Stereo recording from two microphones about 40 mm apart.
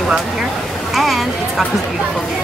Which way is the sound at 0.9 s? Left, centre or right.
Centre.